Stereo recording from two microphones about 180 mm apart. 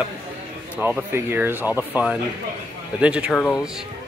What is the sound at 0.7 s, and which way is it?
Speech, 10° right (ahead or behind).